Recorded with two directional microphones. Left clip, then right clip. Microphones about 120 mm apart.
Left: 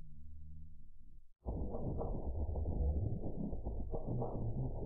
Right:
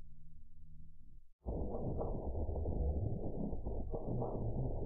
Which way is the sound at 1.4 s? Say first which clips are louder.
Right 2 dB; centre (ahead or behind).